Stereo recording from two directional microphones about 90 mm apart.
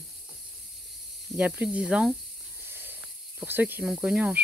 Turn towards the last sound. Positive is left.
turn(degrees=-10)  # may be behind; listen again after turning